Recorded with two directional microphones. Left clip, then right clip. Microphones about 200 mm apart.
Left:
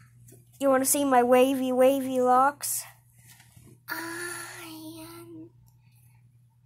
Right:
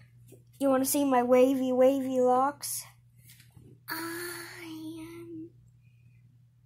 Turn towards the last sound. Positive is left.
turn(degrees=0)  # may be behind; listen again after turning